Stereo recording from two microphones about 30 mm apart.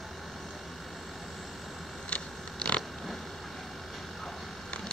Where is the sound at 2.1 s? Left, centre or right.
Left.